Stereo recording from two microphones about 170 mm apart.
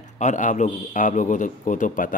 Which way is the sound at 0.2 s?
45° left (ahead or behind).